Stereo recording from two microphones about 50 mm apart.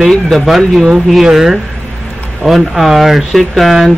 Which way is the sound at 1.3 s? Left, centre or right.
Centre.